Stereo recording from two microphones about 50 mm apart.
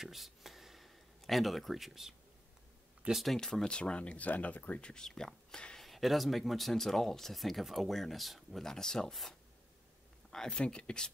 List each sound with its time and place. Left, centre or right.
0.0 s a sound: centre
3.1 s speech: centre
3.6 s speech: left
4.8 s speech: centre
5.8 s speech: centre